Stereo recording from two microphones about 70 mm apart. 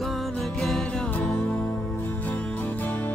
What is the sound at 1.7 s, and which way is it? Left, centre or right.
Music, left.